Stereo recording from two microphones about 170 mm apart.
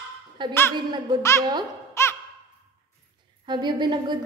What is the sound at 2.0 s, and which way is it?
Music, 15° left (ahead or behind).